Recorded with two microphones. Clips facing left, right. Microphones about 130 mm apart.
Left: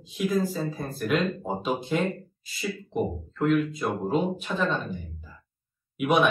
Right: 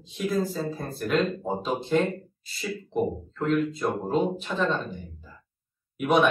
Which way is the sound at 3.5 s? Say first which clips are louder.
Right 1 dB; 5° left (ahead or behind).